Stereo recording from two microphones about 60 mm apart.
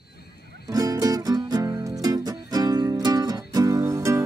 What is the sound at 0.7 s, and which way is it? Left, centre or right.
Music, right.